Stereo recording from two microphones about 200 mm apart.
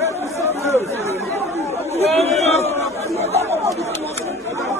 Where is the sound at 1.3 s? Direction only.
30° right (ahead or behind).